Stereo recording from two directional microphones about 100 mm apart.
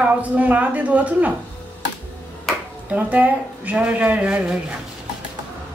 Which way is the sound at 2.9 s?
15° right (ahead or behind).